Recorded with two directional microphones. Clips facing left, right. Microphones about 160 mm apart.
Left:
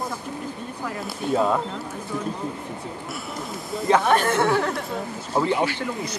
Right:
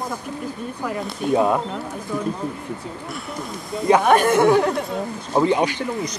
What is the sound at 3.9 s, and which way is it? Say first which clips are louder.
Speech: right 4 dB; 15° right (ahead or behind).